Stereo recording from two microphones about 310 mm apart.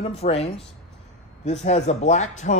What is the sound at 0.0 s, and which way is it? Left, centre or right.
Speech, centre.